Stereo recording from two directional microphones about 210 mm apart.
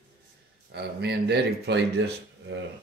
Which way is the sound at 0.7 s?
50° right (ahead or behind).